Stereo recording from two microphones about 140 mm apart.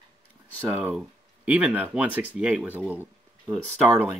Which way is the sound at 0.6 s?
15° right (ahead or behind).